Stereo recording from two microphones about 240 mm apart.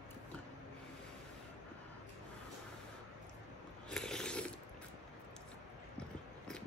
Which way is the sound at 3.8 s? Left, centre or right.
Centre.